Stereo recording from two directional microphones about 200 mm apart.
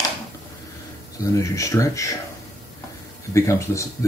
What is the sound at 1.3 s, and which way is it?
Speech, 15° left (ahead or behind).